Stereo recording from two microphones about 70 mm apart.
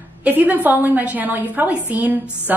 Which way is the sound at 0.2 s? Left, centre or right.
Right.